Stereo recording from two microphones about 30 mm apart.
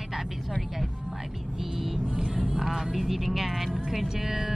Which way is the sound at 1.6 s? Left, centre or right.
Centre.